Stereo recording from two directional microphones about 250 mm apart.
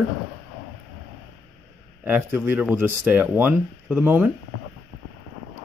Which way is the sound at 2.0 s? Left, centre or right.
Centre.